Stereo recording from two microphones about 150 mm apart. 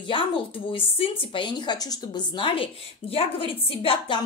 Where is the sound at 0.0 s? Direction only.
35° left (ahead or behind).